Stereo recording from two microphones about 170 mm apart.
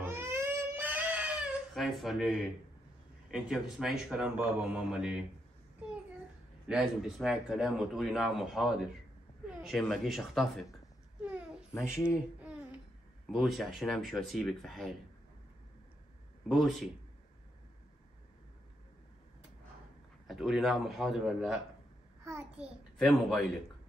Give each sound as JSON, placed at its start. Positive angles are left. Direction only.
{"t": 0.0, "sound": "baby cry", "side_deg": -15}
{"t": 3.3, "sound": "speech", "side_deg": -5}
{"t": 6.7, "sound": "speech", "side_deg": 0}
{"t": 11.7, "sound": "a child's voice", "side_deg": 15}
{"t": 13.3, "sound": "speech", "side_deg": 0}
{"t": 16.4, "sound": "a man's voice", "side_deg": 0}
{"t": 20.2, "sound": "speech", "side_deg": 0}
{"t": 22.2, "sound": "a child's voice", "side_deg": -15}
{"t": 22.9, "sound": "speech", "side_deg": 0}